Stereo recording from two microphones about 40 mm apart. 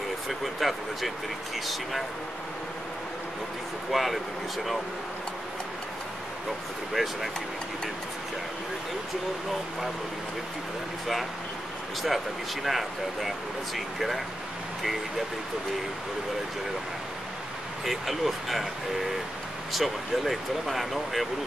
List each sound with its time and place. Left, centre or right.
0.3 s speech: centre
3.9 s speech: centre
6.9 s speech: centre
12.6 s speech: centre
17.8 s speech: centre
19.7 s speech: centre